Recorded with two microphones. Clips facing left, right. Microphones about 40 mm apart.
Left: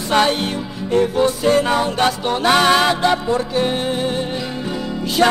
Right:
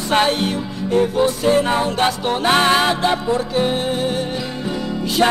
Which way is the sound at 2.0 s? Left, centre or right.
Right.